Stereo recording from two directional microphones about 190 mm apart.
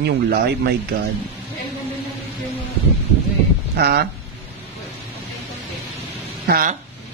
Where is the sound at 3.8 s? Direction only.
55° right (ahead or behind).